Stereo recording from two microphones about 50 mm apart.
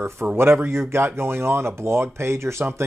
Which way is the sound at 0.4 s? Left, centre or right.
Right.